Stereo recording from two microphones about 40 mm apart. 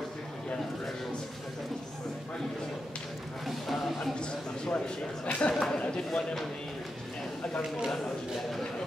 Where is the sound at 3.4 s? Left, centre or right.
Centre.